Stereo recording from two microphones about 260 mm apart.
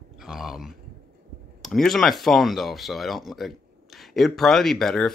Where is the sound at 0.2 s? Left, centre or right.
Centre.